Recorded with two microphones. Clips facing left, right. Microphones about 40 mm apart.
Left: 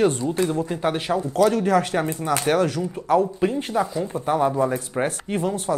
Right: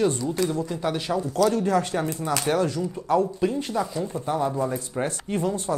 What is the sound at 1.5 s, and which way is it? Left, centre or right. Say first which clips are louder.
Speech: left 3 dB; left.